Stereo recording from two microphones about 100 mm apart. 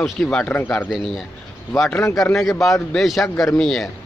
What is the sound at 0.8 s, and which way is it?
Speech, 5° right (ahead or behind).